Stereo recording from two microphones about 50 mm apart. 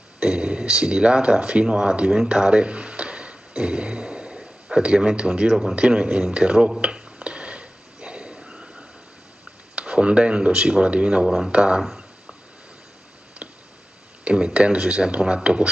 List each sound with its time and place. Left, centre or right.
0.2 s speech: right
6.8 s a sound: right
9.8 s speech: right
11.2 s speech: centre
11.5 s speech: right
11.8 s a sound: centre
13.4 s tick: right
14.2 s speech: right